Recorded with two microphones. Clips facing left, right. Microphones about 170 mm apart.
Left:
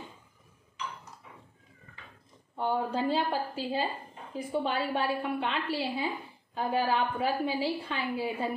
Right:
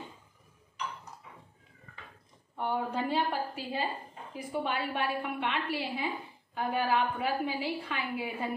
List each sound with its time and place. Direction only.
2.5 s a woman's voice: 30° left (ahead or behind)